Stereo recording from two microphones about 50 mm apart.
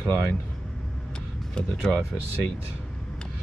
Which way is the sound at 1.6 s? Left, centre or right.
Centre.